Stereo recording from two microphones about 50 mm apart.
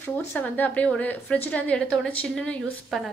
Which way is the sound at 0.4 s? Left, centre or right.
Left.